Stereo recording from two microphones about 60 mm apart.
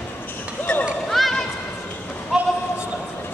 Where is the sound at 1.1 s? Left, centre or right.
Centre.